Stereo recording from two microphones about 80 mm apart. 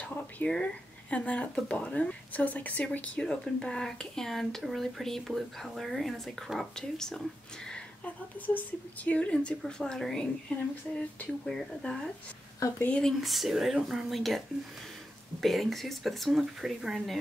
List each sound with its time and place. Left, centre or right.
0.4 s speech: left
10.5 s speech: centre
11.4 s speech: centre
12.5 s speech: left
13.0 s speech: centre
15.4 s speech: centre